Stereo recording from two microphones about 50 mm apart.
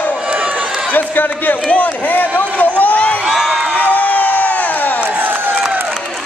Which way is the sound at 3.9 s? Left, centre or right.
Left.